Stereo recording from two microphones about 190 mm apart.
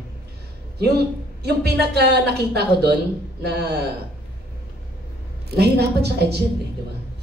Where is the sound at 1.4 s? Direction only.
60° right (ahead or behind).